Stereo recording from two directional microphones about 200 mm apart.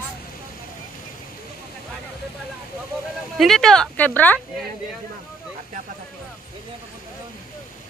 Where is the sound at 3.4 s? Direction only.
Centre (ahead or behind).